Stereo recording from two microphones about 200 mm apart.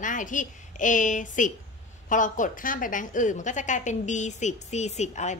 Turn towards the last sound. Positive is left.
turn(degrees=35)  # may be behind; listen again after turning